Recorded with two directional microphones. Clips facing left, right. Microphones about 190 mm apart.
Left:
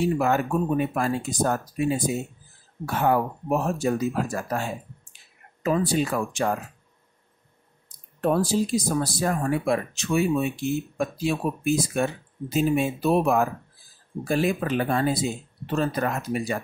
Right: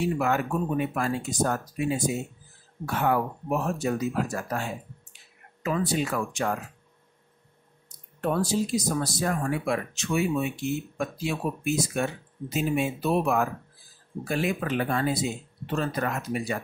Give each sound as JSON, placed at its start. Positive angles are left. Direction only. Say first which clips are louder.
{"t": 0.2, "sound": "speech", "louder": "left 3 dB", "side_deg": 35}
{"t": 8.2, "sound": "speech", "louder": "left 3 dB", "side_deg": 30}